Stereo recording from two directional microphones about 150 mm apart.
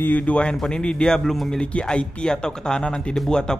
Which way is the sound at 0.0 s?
10° left (ahead or behind).